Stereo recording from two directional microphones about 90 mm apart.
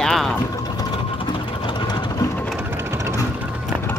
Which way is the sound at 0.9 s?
75° left (ahead or behind).